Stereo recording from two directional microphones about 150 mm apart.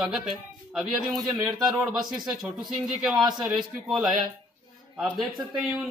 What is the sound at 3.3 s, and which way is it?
A man's voice, 5° right (ahead or behind).